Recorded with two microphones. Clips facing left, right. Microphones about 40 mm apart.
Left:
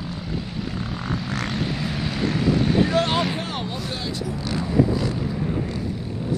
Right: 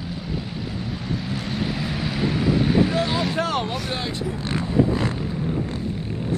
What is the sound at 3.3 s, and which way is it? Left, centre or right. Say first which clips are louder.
Vehicle: right 5 dB; right.